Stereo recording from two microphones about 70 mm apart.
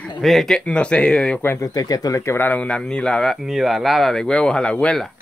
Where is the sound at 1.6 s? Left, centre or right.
Left.